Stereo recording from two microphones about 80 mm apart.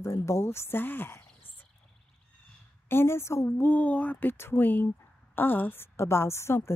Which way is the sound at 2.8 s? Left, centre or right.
Left.